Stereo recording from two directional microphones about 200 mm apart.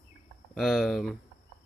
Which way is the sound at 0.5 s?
Centre (ahead or behind).